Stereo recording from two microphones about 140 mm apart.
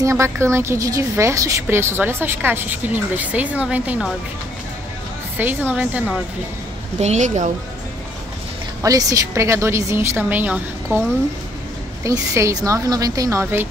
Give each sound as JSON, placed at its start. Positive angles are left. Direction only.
{"t": 0.0, "sound": "a woman's voice", "side_deg": -20}
{"t": 5.4, "sound": "a woman's voice", "side_deg": -15}
{"t": 7.0, "sound": "a woman's voice", "side_deg": -55}
{"t": 8.8, "sound": "a woman's voice", "side_deg": -25}